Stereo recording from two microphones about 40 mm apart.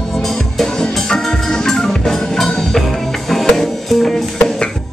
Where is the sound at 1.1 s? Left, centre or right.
Centre.